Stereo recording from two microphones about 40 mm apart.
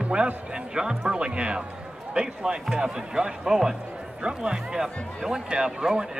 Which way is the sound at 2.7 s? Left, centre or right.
Centre.